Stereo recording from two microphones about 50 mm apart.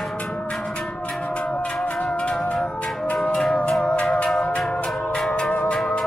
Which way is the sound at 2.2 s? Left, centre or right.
Centre.